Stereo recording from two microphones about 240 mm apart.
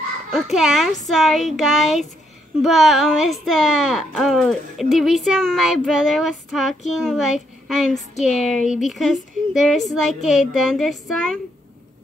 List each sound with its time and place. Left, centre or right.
0.3 s speech: centre